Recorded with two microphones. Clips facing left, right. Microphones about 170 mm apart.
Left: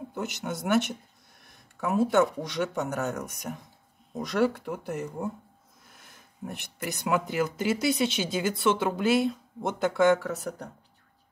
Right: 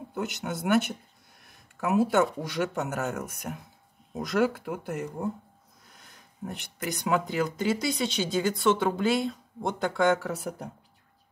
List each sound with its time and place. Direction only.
0.1 s speech: centre (ahead or behind)